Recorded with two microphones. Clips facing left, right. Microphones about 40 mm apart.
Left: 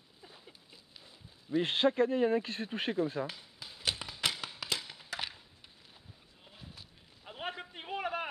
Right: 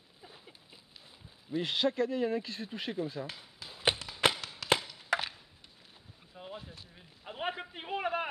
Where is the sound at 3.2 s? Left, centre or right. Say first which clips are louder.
Left 3 dB; centre.